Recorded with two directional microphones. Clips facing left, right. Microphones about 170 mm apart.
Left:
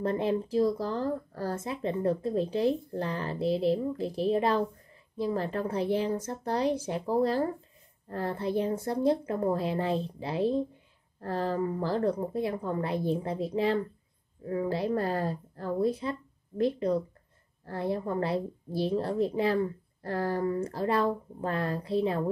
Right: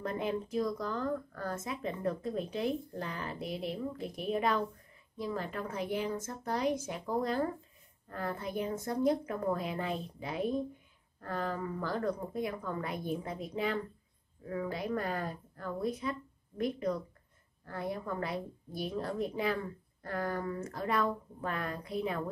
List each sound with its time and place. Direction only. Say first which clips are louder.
0.0 s speech: left 6 dB; 30° left (ahead or behind)